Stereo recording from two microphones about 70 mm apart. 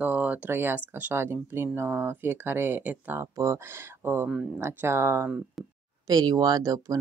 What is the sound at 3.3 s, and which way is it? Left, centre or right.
Speech, right.